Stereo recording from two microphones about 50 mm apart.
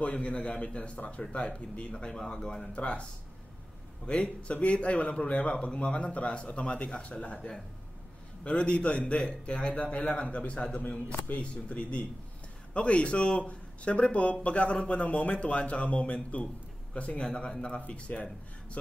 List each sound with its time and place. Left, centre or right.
0.0 s a man's voice: left
2.7 s a man's voice: left
8.5 s a man's voice: left
11.1 s speech: left
11.4 s a man's voice: left